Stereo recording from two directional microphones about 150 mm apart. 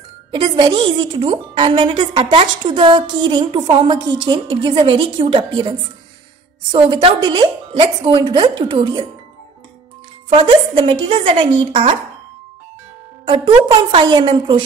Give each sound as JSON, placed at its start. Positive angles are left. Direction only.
{"t": 0.3, "sound": "a woman's voice", "side_deg": -35}
{"t": 10.3, "sound": "a woman's voice", "side_deg": -35}
{"t": 13.2, "sound": "a woman's voice", "side_deg": -30}